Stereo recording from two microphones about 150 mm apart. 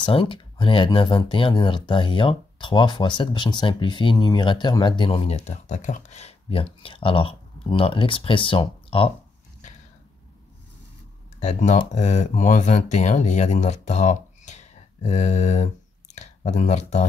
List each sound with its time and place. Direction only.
0.0 s speech: 35° left (ahead or behind)
5.4 s speech: 55° left (ahead or behind); by 9.1 s 35° left (ahead or behind)
11.3 s speech: 55° left (ahead or behind)